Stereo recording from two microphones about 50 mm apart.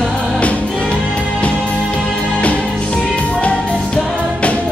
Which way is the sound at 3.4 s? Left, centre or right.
Left.